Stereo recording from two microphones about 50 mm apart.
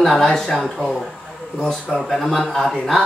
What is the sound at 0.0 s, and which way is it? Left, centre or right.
Speech, centre.